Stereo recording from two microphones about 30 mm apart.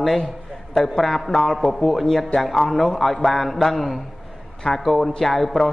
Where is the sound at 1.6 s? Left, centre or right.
Centre.